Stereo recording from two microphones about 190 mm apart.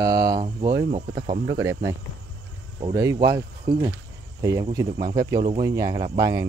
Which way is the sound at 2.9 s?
15° right (ahead or behind).